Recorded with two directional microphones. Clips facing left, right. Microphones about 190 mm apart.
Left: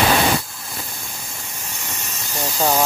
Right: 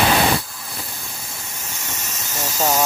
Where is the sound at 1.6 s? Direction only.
10° left (ahead or behind).